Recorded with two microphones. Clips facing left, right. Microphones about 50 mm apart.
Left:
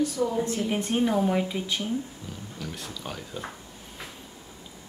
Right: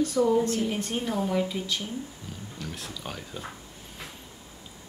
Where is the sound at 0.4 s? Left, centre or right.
Left.